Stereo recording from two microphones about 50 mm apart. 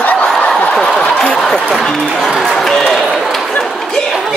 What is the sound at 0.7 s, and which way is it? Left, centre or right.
Speech, centre.